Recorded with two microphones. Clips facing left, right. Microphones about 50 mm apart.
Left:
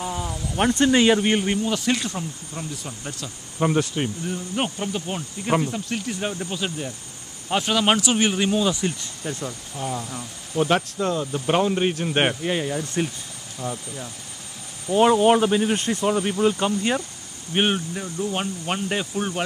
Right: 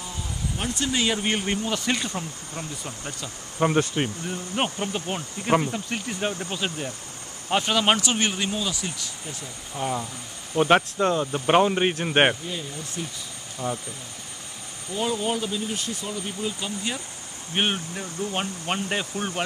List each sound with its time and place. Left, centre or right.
0.0 s a sound: left
0.6 s speech: left
1.2 s speech: centre
8.7 s speech: left
9.2 s speech: left
9.8 s speech: centre
12.4 s speech: left
13.6 s speech: centre
14.9 s speech: left
17.6 s speech: centre